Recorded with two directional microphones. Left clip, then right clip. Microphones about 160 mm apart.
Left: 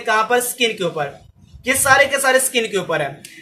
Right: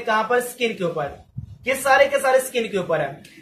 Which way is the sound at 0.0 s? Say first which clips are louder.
Left 3 dB; 55° left (ahead or behind).